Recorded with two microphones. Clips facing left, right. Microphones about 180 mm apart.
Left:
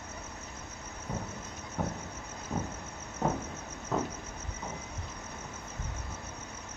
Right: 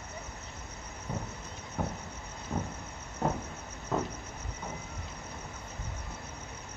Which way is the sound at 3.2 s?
Centre (ahead or behind).